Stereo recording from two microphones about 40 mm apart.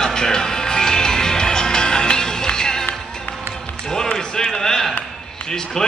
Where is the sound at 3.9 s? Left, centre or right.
Centre.